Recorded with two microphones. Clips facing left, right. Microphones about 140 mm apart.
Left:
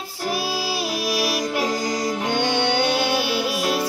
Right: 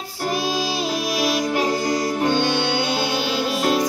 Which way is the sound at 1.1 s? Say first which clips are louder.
Right 3 dB; 5° left (ahead or behind).